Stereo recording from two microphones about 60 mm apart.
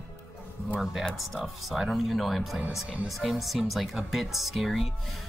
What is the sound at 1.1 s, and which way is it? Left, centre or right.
Speech, centre.